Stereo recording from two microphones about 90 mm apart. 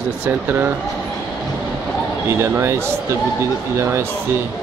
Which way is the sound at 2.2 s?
30° right (ahead or behind).